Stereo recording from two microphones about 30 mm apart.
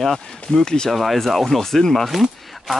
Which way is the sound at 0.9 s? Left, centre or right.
Centre.